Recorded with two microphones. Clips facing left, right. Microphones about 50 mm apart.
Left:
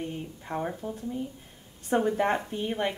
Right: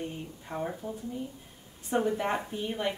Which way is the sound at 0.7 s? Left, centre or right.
Centre.